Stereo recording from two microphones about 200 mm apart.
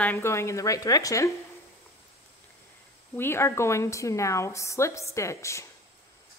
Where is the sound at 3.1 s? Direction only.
10° left (ahead or behind).